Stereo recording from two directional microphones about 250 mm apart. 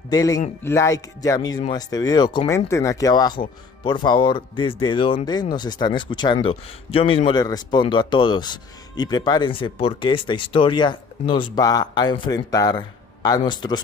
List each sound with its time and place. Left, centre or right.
0.1 s a man's voice: centre